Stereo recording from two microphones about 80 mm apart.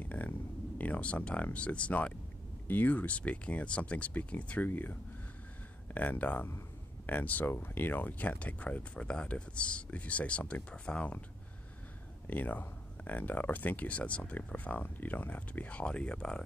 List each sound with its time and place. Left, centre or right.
0.0 s speech: centre
5.9 s speech: left
12.3 s speech: left